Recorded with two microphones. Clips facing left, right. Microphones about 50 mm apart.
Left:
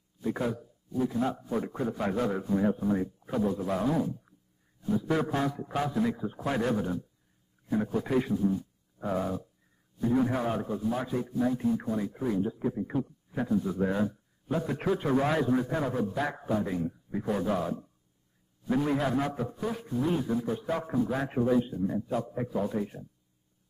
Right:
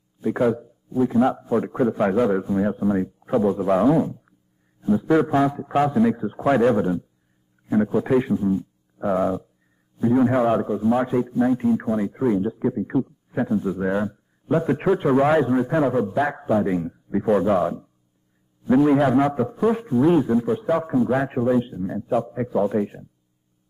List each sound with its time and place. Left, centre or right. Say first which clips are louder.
0.2 s a man's voice: right 10 dB; right
1.4 s a man's voice: right 10 dB; right